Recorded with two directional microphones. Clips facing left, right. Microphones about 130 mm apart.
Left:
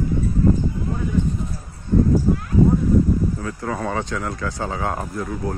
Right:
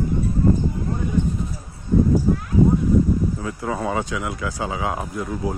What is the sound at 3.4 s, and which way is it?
Speech, 15° right (ahead or behind).